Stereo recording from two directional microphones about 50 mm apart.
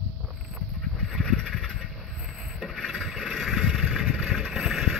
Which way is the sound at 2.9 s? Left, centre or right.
Centre.